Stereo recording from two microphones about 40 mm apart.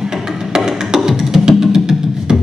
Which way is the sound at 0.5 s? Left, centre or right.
Centre.